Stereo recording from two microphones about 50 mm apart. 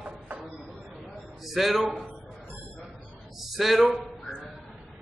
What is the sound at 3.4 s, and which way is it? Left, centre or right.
Speech, centre.